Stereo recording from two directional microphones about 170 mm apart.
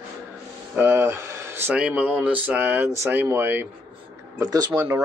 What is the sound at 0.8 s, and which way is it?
Speech, 10° right (ahead or behind).